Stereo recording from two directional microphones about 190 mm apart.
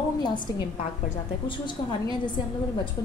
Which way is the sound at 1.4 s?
25° left (ahead or behind).